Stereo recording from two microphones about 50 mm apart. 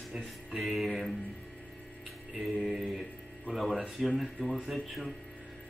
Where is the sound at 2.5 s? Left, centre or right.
Centre.